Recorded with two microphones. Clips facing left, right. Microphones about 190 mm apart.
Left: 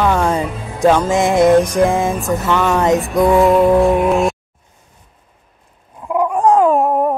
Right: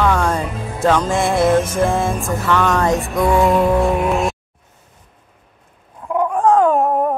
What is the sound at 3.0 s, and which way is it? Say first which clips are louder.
Speech: left 3 dB; centre (ahead or behind).